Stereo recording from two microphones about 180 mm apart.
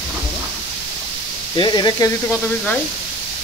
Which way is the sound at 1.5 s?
25° left (ahead or behind).